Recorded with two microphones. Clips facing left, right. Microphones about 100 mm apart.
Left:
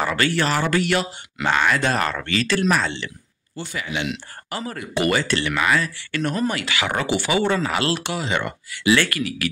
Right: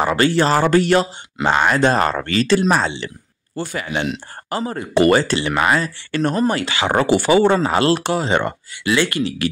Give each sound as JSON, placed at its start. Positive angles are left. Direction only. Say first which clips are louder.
{"t": 0.0, "sound": "speech", "louder": "right 5 dB", "side_deg": -25}
{"t": 3.5, "sound": "speech", "louder": "right 5 dB", "side_deg": -45}
{"t": 8.9, "sound": "speech", "louder": "right 4 dB", "side_deg": -25}